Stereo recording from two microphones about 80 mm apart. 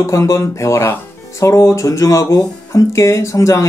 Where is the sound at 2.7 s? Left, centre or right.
Left.